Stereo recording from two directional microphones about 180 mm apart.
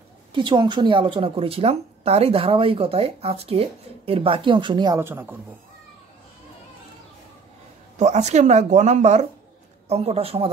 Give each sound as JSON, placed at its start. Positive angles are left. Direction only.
{"t": 0.3, "sound": "speech", "side_deg": -25}
{"t": 5.0, "sound": "speech", "side_deg": -10}
{"t": 8.0, "sound": "speech", "side_deg": -40}